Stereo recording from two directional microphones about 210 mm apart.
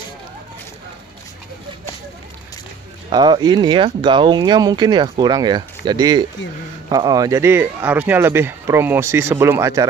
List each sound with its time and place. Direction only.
3.1 s speech: 20° right (ahead or behind)